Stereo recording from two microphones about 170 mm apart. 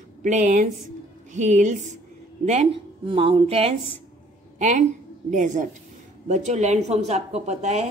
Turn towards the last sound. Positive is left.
turn(degrees=-40)  # may be behind; listen again after turning